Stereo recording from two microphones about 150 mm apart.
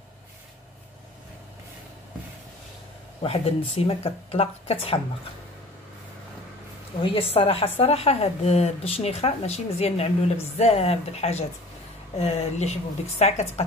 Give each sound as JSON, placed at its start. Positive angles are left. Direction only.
{"t": 3.2, "sound": "speech", "side_deg": 40}
{"t": 7.0, "sound": "a woman's voice", "side_deg": 40}